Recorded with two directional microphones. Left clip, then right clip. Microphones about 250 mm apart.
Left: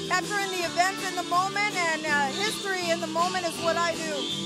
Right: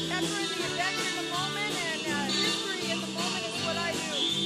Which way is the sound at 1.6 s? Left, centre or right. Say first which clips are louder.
Left 5 dB; left.